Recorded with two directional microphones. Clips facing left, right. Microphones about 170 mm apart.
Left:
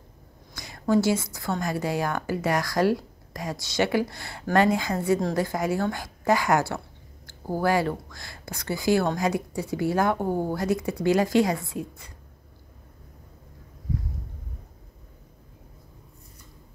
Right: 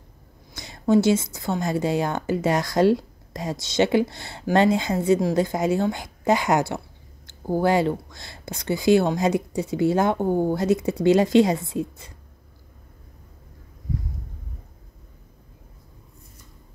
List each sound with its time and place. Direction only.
0.6 s a woman's voice: 25° right (ahead or behind)